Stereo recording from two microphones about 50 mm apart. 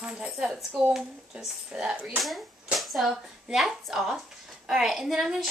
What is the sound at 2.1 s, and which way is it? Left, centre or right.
A woman's voice, centre.